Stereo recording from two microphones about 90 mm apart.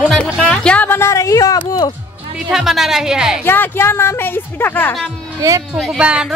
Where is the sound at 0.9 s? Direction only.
30° left (ahead or behind).